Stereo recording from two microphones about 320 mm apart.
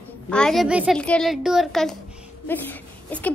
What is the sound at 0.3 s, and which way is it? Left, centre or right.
A child's voice, centre.